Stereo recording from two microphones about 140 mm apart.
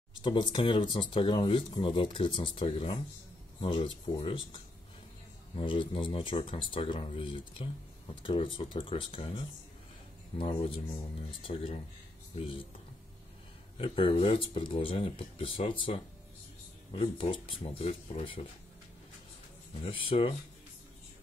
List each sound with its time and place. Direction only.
0.2 s speech: 35° left (ahead or behind)
5.6 s speech: 35° left (ahead or behind)
13.7 s speech: 40° left (ahead or behind)
19.8 s speech: 40° left (ahead or behind)